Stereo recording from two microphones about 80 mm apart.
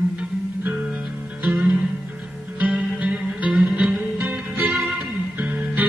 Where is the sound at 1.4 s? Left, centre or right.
Centre.